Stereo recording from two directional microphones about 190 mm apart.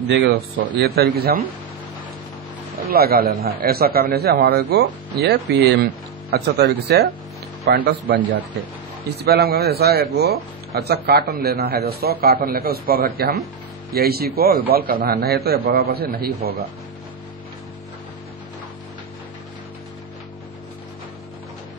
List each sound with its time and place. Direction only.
0.1 s a man's voice: 60° right (ahead or behind)
2.9 s a man's voice: 55° right (ahead or behind)
9.2 s a man's voice: 55° right (ahead or behind)